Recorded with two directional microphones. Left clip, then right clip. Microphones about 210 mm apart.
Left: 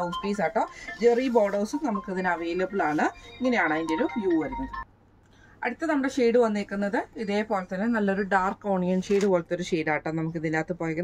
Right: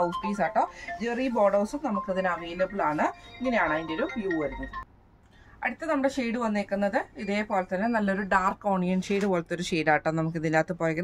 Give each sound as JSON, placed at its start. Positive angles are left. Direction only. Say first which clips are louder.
{"t": 0.2, "sound": "speech", "louder": "even", "side_deg": -15}
{"t": 5.6, "sound": "a woman's voice", "louder": "even", "side_deg": -10}